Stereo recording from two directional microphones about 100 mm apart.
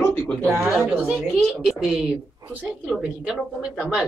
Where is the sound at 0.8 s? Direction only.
10° right (ahead or behind).